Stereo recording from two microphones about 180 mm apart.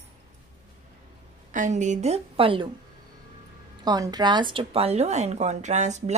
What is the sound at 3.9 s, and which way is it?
A woman's voice, 20° right (ahead or behind).